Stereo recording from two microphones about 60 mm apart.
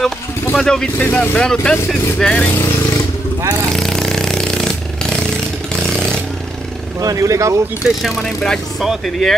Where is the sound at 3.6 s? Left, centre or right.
Centre.